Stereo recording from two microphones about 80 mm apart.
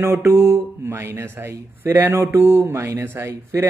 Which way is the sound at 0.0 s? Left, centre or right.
Right.